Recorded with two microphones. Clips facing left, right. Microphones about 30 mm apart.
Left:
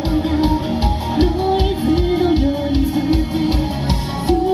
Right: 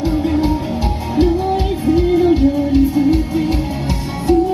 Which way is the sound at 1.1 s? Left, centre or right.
Left.